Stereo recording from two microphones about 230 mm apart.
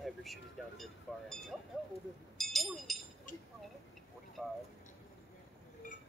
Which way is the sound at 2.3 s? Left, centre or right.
Centre.